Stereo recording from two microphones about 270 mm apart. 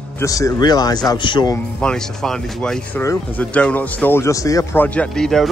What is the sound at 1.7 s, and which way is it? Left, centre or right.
Speech, centre.